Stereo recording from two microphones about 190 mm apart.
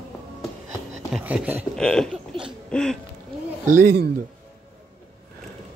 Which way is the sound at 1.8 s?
5° left (ahead or behind).